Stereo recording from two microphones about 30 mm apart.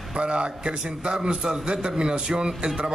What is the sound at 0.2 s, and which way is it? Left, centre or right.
A man's voice, right.